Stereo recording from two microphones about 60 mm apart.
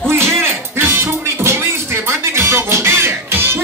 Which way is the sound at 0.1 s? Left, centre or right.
Right.